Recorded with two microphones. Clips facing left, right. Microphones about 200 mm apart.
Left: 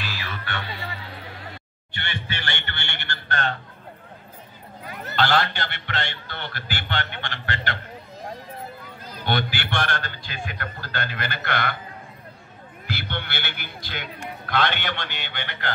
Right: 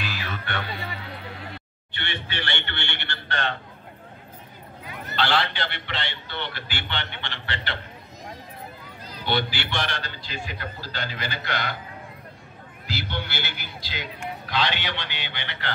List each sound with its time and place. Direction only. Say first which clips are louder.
1.9 s a sound: left 1 dB; 45° left (ahead or behind)
4.8 s a man's voice: left 3 dB; 45° left (ahead or behind)
9.2 s a man's voice: even; 50° left (ahead or behind)
12.8 s a man's voice: even; 55° left (ahead or behind)